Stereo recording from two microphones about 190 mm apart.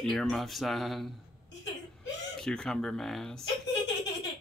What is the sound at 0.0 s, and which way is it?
Speech, centre (ahead or behind).